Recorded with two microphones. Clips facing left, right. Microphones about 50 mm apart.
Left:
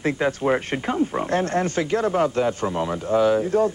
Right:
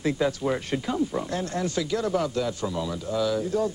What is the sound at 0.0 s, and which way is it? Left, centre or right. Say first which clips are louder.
Speech: left 3 dB; left.